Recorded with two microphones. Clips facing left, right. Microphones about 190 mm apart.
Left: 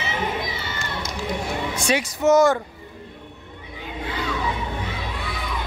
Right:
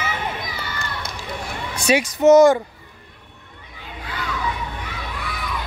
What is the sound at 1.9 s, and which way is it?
Speech, 15° right (ahead or behind).